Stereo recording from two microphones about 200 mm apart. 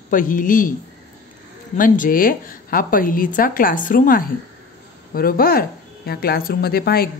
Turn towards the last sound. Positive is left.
turn(degrees=50)  # may be behind; listen again after turning